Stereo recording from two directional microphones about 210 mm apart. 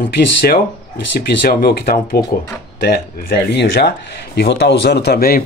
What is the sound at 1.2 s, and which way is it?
Speech, 50° left (ahead or behind).